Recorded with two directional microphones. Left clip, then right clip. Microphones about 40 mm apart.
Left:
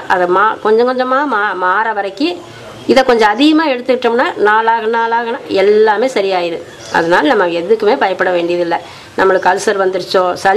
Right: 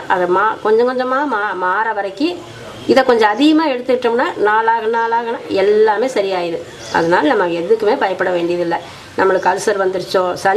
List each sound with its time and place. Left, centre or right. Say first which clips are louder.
0.2 s a woman's voice: left 3 dB; left